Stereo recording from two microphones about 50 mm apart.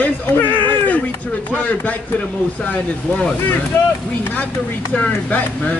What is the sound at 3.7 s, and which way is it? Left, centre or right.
Speech, left.